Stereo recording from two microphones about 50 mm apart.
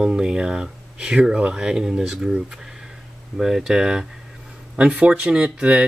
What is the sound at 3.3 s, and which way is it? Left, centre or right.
Speech, centre.